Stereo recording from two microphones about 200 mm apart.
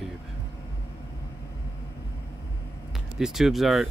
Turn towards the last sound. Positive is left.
turn(degrees=0)  # may be behind; listen again after turning